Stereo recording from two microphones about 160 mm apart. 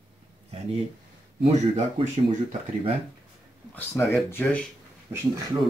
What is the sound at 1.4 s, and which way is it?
Speech, 45° right (ahead or behind).